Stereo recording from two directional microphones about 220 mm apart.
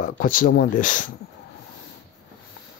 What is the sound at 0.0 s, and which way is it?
Speech, 40° left (ahead or behind).